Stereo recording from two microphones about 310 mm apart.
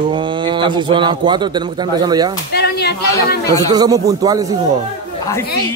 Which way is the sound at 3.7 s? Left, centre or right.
Centre.